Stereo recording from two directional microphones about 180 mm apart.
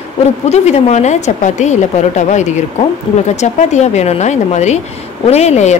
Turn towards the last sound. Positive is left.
turn(degrees=40)  # may be behind; listen again after turning